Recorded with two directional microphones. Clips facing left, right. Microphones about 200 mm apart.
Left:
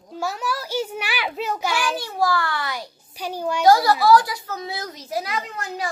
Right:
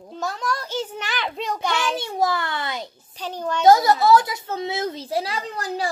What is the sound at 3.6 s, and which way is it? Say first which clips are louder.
A woman's voice: right 1 dB; 20° right (ahead or behind).